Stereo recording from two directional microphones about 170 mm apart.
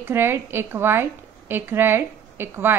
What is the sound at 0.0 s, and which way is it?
A woman's voice, 15° right (ahead or behind).